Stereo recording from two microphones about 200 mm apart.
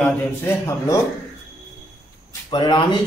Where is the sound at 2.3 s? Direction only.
20° left (ahead or behind).